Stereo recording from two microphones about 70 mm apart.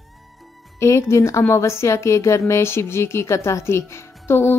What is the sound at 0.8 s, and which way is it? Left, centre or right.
A woman's voice, left.